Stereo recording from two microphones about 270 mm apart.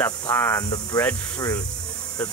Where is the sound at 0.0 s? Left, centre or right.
Centre.